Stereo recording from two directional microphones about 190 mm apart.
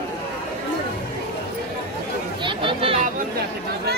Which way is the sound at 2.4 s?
30° right (ahead or behind).